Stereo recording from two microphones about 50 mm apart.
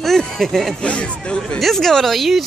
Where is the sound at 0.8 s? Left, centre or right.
Left.